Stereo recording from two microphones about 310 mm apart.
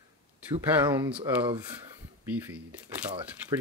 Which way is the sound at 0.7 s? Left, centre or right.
Centre.